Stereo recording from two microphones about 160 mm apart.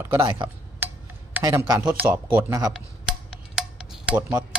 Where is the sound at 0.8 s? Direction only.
15° right (ahead or behind).